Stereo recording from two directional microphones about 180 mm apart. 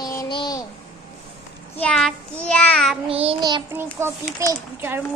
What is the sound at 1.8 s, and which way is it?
Speech, 5° left (ahead or behind).